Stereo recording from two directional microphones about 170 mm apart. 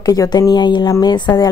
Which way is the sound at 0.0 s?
20° left (ahead or behind).